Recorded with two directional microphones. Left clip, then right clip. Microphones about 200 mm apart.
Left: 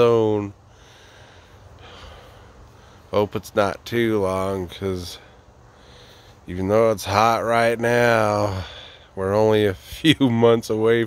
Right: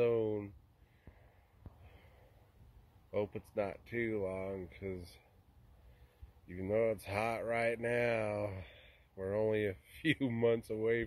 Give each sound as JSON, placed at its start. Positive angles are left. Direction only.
{"t": 0.0, "sound": "a sound", "side_deg": 20}
{"t": 3.1, "sound": "speech", "side_deg": 20}
{"t": 6.4, "sound": "speech", "side_deg": 15}